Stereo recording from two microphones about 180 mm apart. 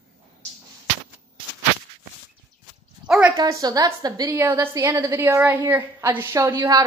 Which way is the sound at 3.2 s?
15° right (ahead or behind).